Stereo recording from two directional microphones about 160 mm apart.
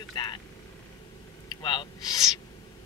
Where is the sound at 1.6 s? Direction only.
30° left (ahead or behind).